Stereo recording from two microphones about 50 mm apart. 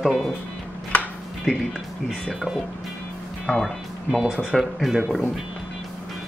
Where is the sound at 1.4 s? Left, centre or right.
Centre.